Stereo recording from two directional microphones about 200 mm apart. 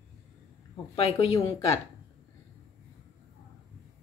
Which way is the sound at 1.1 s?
15° left (ahead or behind).